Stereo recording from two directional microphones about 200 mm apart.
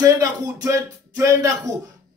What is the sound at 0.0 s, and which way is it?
A man's voice, 20° right (ahead or behind).